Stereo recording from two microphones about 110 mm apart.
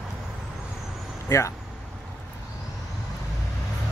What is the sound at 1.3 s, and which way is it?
Speech, 25° left (ahead or behind).